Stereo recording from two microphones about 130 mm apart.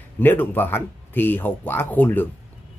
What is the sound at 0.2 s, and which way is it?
Speech, 15° left (ahead or behind).